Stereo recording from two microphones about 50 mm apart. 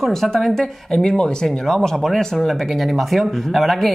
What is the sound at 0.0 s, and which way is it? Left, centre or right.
Speech, centre.